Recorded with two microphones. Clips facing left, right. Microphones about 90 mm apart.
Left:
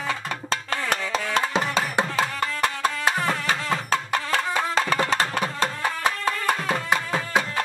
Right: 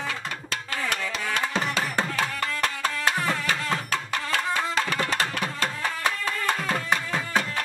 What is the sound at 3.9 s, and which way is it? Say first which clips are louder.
Music: left 4 dB; 30° left (ahead or behind).